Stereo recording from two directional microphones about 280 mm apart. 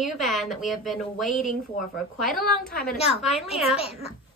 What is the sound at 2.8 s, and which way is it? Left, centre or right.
Speech, left.